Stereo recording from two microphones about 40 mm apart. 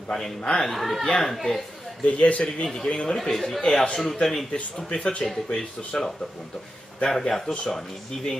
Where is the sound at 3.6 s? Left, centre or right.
Centre.